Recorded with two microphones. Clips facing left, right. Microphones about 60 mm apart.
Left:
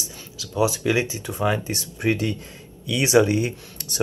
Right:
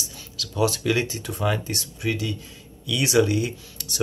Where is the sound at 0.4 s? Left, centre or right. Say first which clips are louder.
Left 1 dB; centre.